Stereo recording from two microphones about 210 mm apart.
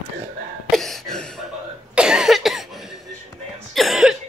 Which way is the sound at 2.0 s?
5° right (ahead or behind).